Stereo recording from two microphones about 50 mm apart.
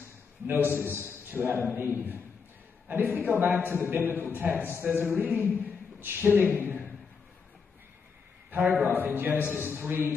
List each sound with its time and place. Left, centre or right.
0.5 s a man's voice: right
8.6 s a man's voice: right
9.4 s a man's voice: left
9.7 s a man's voice: right